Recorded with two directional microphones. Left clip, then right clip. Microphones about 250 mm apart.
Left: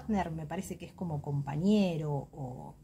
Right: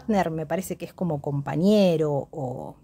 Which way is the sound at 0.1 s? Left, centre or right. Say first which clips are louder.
Right 11 dB; right.